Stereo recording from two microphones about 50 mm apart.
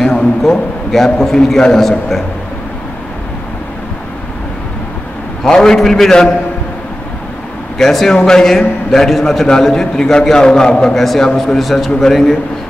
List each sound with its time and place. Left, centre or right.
0.0 s a sound: centre
0.4 s a man's voice: centre
5.4 s a man's voice: centre
7.7 s a man's voice: centre